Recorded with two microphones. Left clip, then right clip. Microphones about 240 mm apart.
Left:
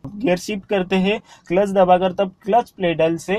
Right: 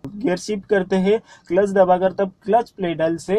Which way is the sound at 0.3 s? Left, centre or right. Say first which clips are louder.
Even; left.